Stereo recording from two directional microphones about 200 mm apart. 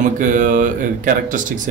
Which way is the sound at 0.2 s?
45° right (ahead or behind).